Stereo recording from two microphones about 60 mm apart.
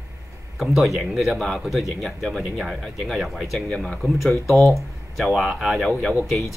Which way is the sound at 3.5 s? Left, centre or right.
Centre.